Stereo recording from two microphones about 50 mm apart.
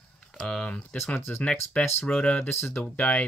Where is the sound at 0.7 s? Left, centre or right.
Left.